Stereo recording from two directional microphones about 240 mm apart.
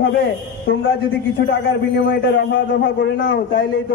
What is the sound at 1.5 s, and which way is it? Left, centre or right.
A man's voice, left.